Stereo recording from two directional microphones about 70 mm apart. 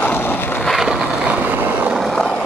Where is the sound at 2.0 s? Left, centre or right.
Centre.